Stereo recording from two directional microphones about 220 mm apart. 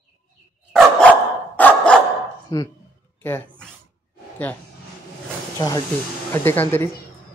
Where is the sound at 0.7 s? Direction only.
5° left (ahead or behind).